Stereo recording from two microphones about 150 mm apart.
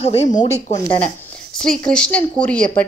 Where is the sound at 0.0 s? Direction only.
50° left (ahead or behind).